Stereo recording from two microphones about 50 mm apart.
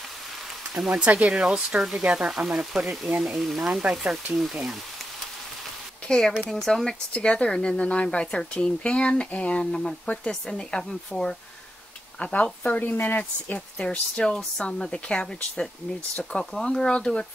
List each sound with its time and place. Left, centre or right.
0.7 s speech: centre
1.0 s speech: right
1.3 s speech: centre
6.0 s speech: centre
7.1 s speech: left
12.2 s speech: left
12.8 s a woman's voice: left
13.2 s speech: left